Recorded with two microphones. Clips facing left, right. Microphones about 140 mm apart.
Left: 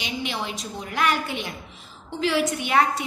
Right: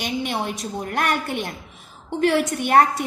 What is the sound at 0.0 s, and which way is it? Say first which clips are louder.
A woman's voice: right 4 dB; 50° right (ahead or behind).